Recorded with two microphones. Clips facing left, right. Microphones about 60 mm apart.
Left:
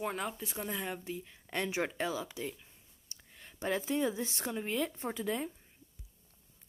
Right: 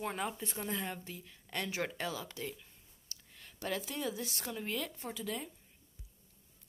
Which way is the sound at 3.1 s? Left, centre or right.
Left.